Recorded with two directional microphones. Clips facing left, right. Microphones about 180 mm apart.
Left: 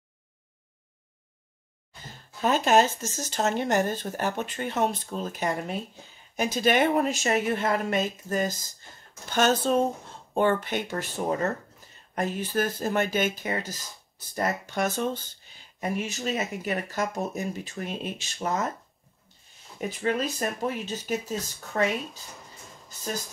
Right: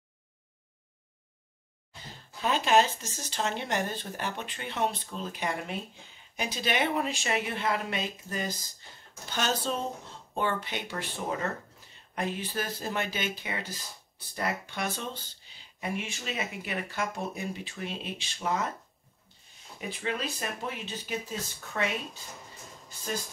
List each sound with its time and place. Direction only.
2.4 s speech: 45° left (ahead or behind)
19.8 s speech: 45° left (ahead or behind)